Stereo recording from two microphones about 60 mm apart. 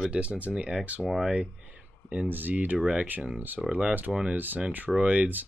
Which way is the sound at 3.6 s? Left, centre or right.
Centre.